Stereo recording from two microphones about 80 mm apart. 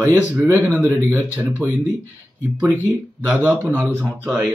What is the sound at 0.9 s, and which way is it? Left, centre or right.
Speech, right.